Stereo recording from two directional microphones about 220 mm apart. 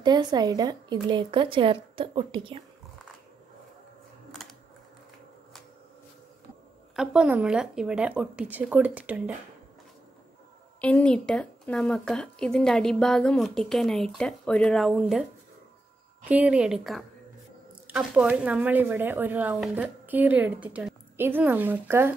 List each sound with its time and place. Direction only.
0.0 s a woman's voice: 20° right (ahead or behind)
7.0 s a woman's voice: 5° right (ahead or behind)
10.8 s a woman's voice: 5° left (ahead or behind)
16.3 s a woman's voice: 5° right (ahead or behind)